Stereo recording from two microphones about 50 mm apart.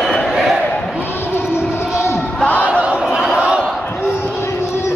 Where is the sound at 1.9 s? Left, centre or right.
Left.